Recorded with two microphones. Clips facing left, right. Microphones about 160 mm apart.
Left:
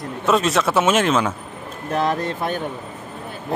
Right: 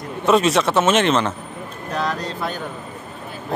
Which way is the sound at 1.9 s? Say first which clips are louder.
Left 3 dB; 25° left (ahead or behind).